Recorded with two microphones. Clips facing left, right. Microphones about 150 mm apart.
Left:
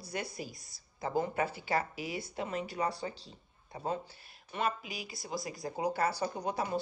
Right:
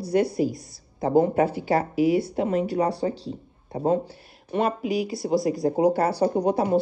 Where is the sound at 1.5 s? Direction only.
65° right (ahead or behind).